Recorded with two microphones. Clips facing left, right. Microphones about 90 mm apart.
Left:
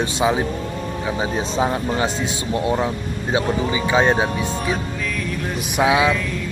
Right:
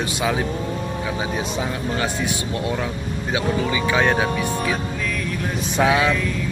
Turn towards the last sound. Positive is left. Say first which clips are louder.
# left 1 dB
turn(degrees=15)  # may be behind; listen again after turning